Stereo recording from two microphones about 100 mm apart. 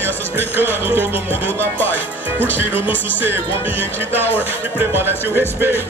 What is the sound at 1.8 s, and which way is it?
Speech, 20° left (ahead or behind).